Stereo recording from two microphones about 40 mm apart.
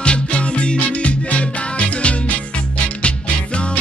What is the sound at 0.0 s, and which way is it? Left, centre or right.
Music, left.